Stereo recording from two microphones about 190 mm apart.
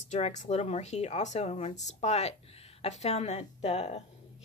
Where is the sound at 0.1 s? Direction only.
40° left (ahead or behind).